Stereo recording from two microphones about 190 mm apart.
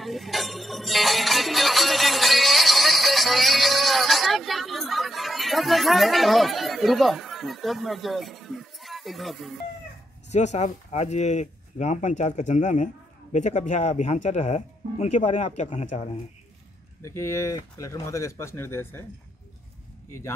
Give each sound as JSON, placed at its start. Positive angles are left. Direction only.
{"t": 0.0, "sound": "music", "side_deg": 0}
{"t": 10.3, "sound": "speech", "side_deg": 35}
{"t": 17.0, "sound": "speech", "side_deg": 15}
{"t": 20.1, "sound": "a man's voice", "side_deg": 15}